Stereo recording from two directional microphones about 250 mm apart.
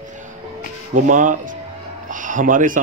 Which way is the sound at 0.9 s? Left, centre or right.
Right.